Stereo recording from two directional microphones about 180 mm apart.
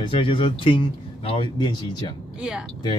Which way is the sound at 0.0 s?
30° left (ahead or behind).